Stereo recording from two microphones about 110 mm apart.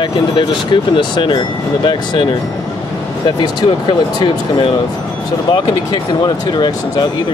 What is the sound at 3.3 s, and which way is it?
Speech, 45° left (ahead or behind).